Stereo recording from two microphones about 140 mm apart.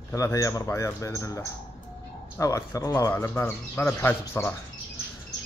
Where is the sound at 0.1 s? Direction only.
25° left (ahead or behind).